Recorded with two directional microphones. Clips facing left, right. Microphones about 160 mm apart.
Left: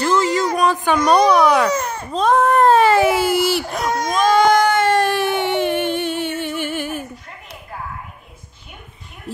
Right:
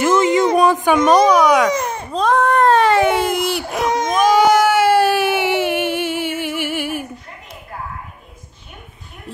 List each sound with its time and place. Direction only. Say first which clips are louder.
0.0 s a sound: right 3 dB; 20° right (ahead or behind); by 1.7 s 5° right (ahead or behind)
1.7 s baby cry: right 2 dB; 15° right (ahead or behind)
2.1 s speech: left 1 dB; 5° left (ahead or behind)
3.9 s baby cry: right 1 dB; 15° right (ahead or behind)